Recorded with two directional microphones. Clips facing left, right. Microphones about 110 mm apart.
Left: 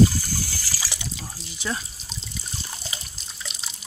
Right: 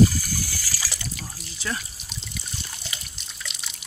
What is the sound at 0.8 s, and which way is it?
Water, 20° left (ahead or behind).